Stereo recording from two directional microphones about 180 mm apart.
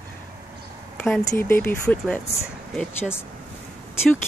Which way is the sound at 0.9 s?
5° left (ahead or behind).